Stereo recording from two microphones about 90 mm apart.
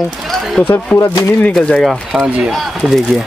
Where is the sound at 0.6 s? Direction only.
10° left (ahead or behind).